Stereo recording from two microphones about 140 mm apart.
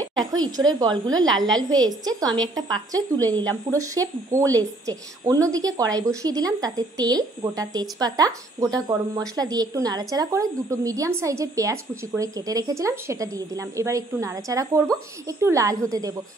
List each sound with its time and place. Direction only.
0.2 s speech: 25° right (ahead or behind)
1.2 s a woman's voice: centre (ahead or behind)
1.6 s a woman's voice: 30° right (ahead or behind)